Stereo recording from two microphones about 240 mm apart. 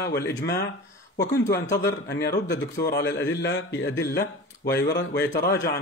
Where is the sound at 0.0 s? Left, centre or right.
Left.